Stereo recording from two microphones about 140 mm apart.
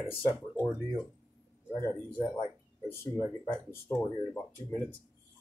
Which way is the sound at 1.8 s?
20° left (ahead or behind).